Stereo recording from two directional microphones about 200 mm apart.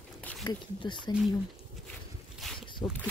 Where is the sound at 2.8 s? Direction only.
20° left (ahead or behind).